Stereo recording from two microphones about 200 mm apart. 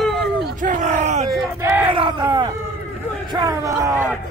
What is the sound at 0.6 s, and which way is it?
Groan, 40° right (ahead or behind).